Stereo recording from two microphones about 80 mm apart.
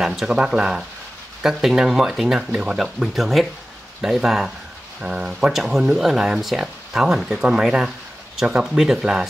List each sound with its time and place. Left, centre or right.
0.0 s speech: centre